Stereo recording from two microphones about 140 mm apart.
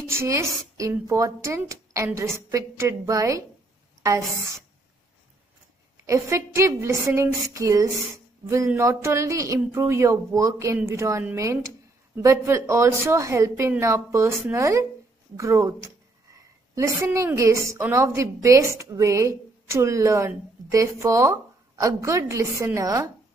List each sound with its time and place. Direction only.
0.0 s a woman's voice: 20° right (ahead or behind)
6.0 s a woman's voice: 20° right (ahead or behind)